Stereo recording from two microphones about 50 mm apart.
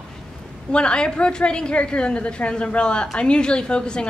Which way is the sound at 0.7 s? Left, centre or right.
Centre.